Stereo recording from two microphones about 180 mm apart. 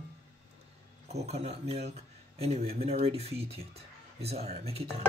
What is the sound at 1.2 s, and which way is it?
Speech, 35° right (ahead or behind).